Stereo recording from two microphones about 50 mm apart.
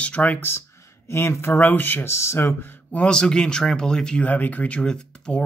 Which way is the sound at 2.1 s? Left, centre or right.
Left.